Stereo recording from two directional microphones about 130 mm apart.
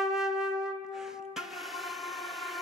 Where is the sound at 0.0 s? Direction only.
5° right (ahead or behind).